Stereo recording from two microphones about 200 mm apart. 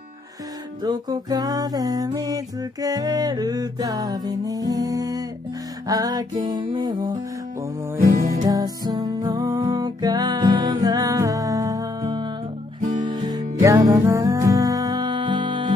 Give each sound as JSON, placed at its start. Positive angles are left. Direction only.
{"t": 0.8, "sound": "music", "side_deg": -20}
{"t": 8.2, "sound": "music", "side_deg": -50}
{"t": 8.5, "sound": "music", "side_deg": -20}